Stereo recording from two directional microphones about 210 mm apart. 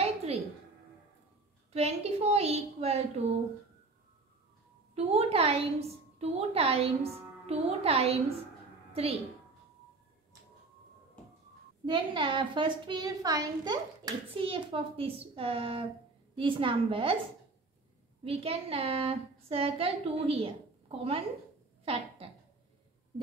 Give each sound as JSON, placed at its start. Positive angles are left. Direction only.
{"t": 0.0, "sound": "a sound", "side_deg": -30}
{"t": 1.7, "sound": "a woman's voice", "side_deg": -30}
{"t": 4.9, "sound": "a child's voice", "side_deg": -30}
{"t": 11.8, "sound": "a child's voice", "side_deg": -20}
{"t": 18.2, "sound": "a child's voice", "side_deg": -30}
{"t": 21.8, "sound": "a sound", "side_deg": -25}